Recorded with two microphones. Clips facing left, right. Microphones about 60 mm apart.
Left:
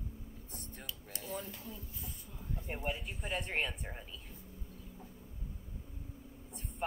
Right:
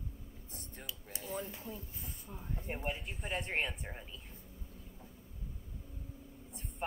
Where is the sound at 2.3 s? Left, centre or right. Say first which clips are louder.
Right 1 dB; right.